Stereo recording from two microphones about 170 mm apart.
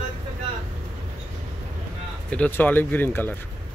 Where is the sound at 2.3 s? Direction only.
10° left (ahead or behind).